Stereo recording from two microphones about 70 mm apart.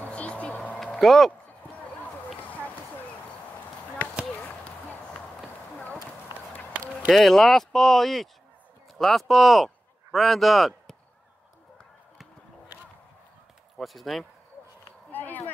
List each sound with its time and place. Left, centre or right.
0.0 s vehicle: centre
0.9 s speech: centre
4.4 s basketball bounce: left
7.1 s speech: centre
13.7 s speech: centre
15.0 s a sound: left